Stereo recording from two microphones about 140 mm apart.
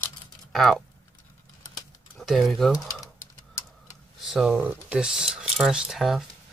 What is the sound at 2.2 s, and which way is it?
Speech, centre (ahead or behind).